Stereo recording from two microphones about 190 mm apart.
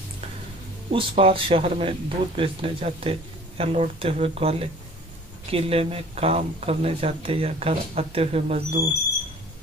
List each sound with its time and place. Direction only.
0.9 s speech: 30° right (ahead or behind)